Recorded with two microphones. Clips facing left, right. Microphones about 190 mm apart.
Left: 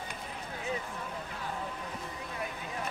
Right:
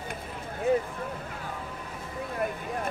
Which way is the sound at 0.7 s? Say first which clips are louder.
Right 12 dB; 55° right (ahead or behind).